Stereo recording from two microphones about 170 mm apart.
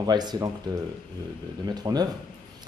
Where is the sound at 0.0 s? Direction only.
25° right (ahead or behind).